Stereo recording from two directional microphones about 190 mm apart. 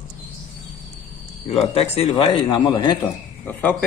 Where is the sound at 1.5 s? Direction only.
30° left (ahead or behind).